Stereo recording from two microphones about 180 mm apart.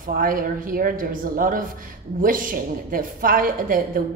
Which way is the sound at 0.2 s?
50° right (ahead or behind).